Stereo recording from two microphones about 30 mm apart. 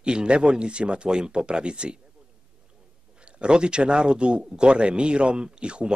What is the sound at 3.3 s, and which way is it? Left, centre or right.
Speech, right.